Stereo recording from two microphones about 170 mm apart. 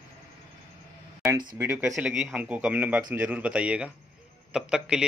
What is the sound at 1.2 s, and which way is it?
Speech, 25° right (ahead or behind).